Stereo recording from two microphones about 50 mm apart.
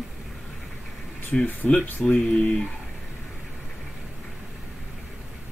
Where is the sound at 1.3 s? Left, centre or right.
Centre.